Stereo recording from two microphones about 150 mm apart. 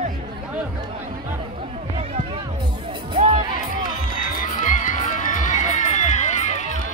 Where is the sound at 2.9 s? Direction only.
45° right (ahead or behind).